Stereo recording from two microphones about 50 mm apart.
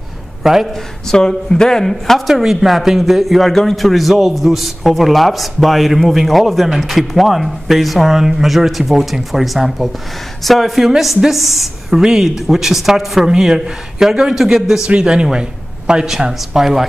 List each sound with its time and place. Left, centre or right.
0.4 s a man's voice: centre
1.1 s a man's voice: centre